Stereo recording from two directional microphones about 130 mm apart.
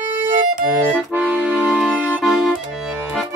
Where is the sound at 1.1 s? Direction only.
10° right (ahead or behind).